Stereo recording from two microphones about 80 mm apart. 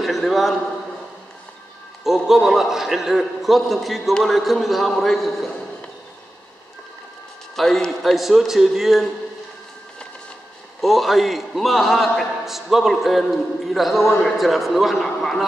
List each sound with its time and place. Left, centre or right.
0.0 s a man's voice: centre
2.0 s a man's voice: centre
7.5 s a man's voice: centre
10.8 s a man's voice: centre